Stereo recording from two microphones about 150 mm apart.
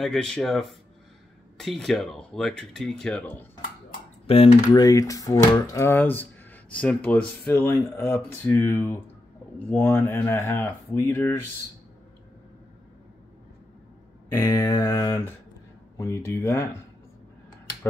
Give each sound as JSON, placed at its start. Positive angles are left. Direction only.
{"t": 0.0, "sound": "speech", "side_deg": 5}
{"t": 4.3, "sound": "speech", "side_deg": 40}
{"t": 4.6, "sound": "speech", "side_deg": 25}
{"t": 14.3, "sound": "speech", "side_deg": 20}